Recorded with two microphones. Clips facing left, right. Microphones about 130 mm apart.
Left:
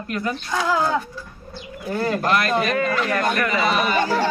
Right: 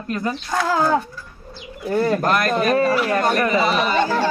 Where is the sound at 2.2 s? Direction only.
45° right (ahead or behind).